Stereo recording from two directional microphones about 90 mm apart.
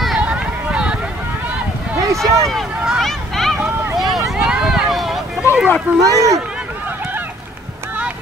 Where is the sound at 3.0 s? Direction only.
5° left (ahead or behind).